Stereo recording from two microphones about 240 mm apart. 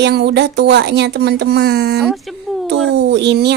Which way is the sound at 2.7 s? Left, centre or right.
Right.